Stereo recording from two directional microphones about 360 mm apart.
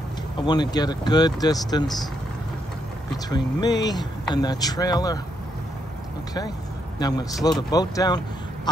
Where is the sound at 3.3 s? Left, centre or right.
Centre.